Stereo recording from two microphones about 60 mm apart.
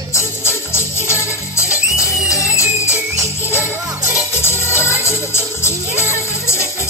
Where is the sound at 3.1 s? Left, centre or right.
Left.